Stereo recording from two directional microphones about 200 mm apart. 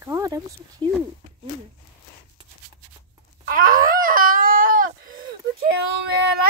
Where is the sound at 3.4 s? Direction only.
45° right (ahead or behind).